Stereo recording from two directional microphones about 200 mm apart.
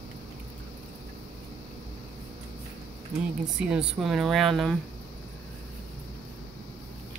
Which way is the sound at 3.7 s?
5° right (ahead or behind).